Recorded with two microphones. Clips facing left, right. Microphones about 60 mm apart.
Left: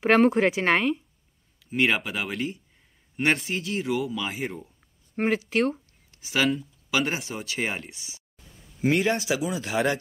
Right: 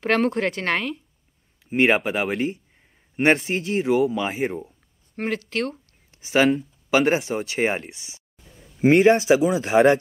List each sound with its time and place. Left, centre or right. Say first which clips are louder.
0.0 s speech: left 2 dB; centre
1.7 s speech: right 5 dB; right
5.1 s speech: left 2 dB; centre
6.2 s speech: right 6 dB; right
7.4 s speech: right 6 dB; right